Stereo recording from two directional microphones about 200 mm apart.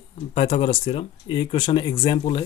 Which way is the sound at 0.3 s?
30° left (ahead or behind).